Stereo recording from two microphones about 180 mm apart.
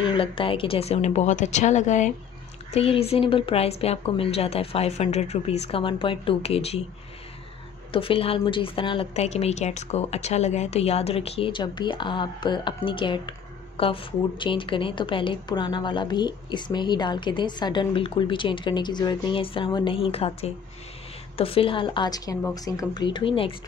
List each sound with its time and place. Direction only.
0.0 s a woman's voice: 30° left (ahead or behind)
7.9 s a woman's voice: 30° left (ahead or behind)